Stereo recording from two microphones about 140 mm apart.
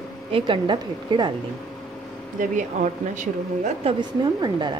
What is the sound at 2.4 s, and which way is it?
Speech, 65° right (ahead or behind).